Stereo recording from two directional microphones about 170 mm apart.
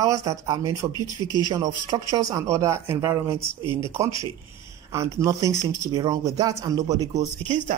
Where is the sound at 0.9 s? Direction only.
25° left (ahead or behind).